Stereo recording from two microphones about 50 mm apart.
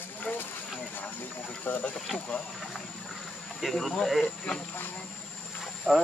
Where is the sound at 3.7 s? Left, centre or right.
Centre.